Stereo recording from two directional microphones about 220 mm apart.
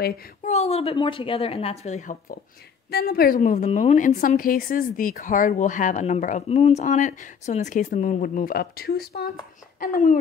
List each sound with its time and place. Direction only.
0.0 s a woman's voice: 35° left (ahead or behind)